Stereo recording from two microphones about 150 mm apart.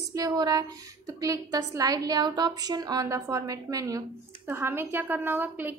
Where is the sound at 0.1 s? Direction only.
25° right (ahead or behind).